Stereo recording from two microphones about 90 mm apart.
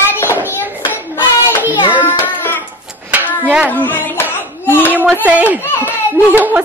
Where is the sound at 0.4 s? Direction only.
25° left (ahead or behind).